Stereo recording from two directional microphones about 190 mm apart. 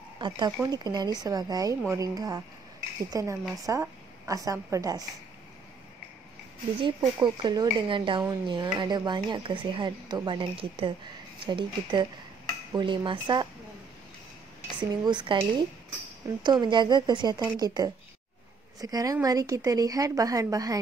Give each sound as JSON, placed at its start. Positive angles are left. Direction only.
{"t": 0.2, "sound": "a woman's voice", "side_deg": -20}
{"t": 6.8, "sound": "speech", "side_deg": -20}
{"t": 14.8, "sound": "a woman's voice", "side_deg": -25}